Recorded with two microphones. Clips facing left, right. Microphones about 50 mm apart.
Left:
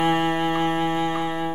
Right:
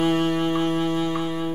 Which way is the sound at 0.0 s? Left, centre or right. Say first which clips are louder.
Even; left.